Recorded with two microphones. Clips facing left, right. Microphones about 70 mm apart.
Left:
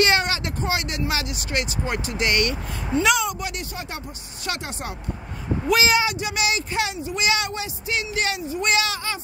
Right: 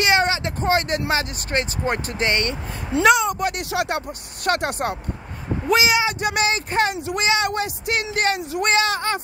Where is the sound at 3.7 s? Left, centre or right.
Right.